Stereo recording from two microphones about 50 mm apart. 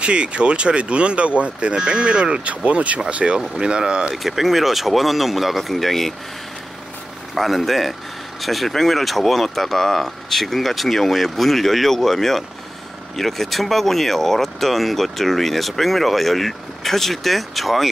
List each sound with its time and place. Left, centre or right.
0.0 s speech: right
4.1 s speech: centre
7.3 s speech: centre